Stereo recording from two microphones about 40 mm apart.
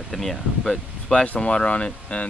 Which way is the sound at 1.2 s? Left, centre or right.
Left.